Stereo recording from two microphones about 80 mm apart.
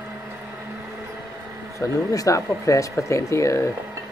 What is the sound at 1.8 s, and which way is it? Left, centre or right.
Speech, left.